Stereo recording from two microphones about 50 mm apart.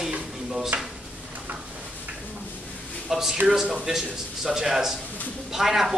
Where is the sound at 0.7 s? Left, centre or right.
Right.